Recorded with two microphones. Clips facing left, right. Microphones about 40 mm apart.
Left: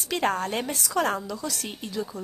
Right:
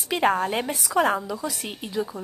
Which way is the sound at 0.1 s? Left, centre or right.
Centre.